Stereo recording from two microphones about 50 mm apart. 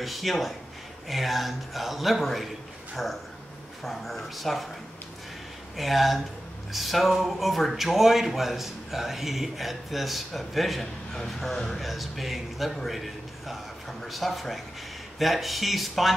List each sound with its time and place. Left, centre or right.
0.0 s speech: centre
5.8 s speech: centre